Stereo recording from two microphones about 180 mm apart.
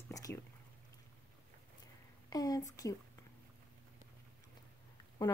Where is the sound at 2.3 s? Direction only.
20° left (ahead or behind).